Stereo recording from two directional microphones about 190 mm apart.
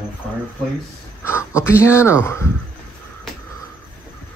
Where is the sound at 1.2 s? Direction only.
15° left (ahead or behind).